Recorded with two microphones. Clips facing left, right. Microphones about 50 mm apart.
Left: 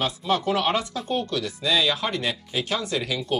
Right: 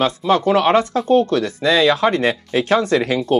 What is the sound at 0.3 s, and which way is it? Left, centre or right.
Speech, right.